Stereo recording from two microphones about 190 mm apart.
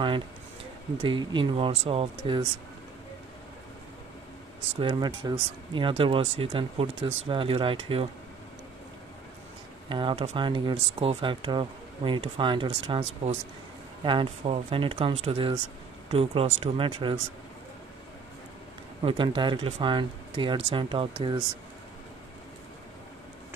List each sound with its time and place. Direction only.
1.0 s speech: 25° right (ahead or behind)
4.7 s speech: 25° right (ahead or behind)
9.8 s speech: 25° right (ahead or behind)
14.0 s speech: 30° right (ahead or behind)
19.0 s speech: 25° right (ahead or behind)